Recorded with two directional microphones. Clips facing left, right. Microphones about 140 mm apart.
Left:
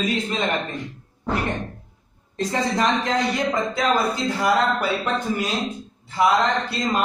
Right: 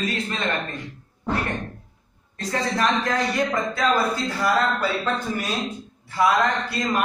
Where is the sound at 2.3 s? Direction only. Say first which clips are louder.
Left 3 dB; 20° left (ahead or behind).